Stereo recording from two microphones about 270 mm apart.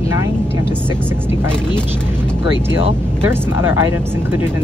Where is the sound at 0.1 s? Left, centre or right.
Centre.